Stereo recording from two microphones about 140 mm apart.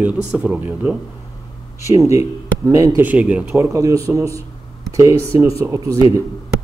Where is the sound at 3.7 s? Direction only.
25° right (ahead or behind).